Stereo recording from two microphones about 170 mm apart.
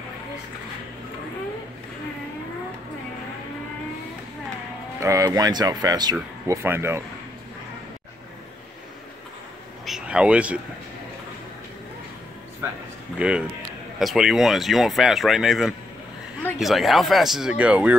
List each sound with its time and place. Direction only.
5.0 s speech: 20° right (ahead or behind)
9.8 s a sound: 5° right (ahead or behind)
13.2 s speech: 5° right (ahead or behind)